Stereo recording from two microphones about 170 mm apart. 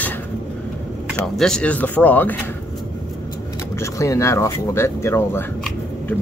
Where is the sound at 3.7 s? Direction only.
15° left (ahead or behind).